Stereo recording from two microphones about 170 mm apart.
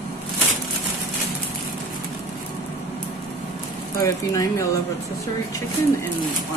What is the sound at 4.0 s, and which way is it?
Speech, 20° left (ahead or behind).